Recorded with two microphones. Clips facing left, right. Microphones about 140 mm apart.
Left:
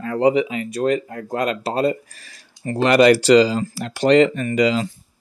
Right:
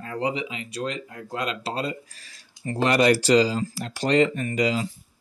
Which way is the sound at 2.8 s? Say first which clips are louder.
Left 6 dB; 80° left.